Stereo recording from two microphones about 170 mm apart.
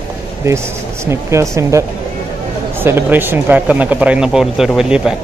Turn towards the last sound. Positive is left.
turn(degrees=-5)  # may be behind; listen again after turning